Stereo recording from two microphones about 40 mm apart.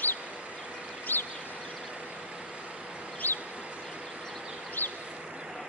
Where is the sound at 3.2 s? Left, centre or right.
Left.